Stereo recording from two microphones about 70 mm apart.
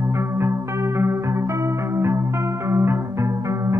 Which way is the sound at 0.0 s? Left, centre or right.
Right.